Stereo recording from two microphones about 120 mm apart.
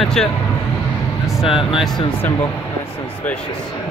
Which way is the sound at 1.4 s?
50° left (ahead or behind).